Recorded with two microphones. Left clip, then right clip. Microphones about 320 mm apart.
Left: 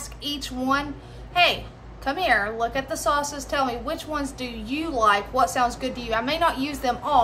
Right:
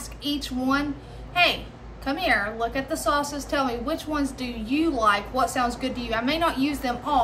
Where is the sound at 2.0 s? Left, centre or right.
Centre.